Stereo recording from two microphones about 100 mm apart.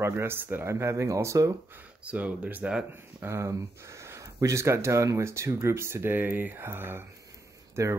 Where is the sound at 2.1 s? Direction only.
15° right (ahead or behind).